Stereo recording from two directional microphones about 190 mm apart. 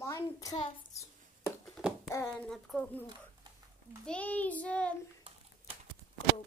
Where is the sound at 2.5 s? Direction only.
Centre (ahead or behind).